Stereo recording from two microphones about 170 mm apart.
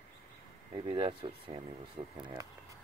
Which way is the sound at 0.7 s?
30° right (ahead or behind).